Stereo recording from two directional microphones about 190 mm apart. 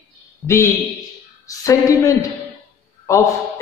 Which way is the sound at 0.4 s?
5° left (ahead or behind).